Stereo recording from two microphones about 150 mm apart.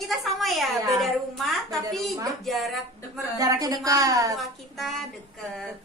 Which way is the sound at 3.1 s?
25° right (ahead or behind).